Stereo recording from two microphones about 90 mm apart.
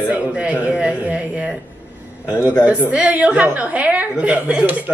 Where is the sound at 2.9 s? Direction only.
15° right (ahead or behind).